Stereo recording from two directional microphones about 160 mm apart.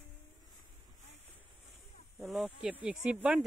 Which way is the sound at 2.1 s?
5° right (ahead or behind).